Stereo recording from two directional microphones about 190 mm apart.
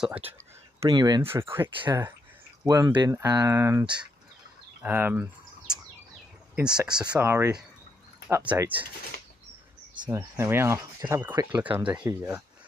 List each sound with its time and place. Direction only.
0.0 s speech: 5° right (ahead or behind)
0.8 s speech: 20° right (ahead or behind)
6.7 s speech: 20° right (ahead or behind)
10.0 s speech: 15° right (ahead or behind)